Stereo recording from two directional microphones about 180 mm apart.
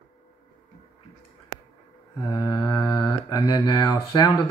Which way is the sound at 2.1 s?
20° left (ahead or behind).